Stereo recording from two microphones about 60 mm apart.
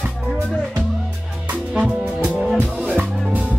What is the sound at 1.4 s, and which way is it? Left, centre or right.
Music, right.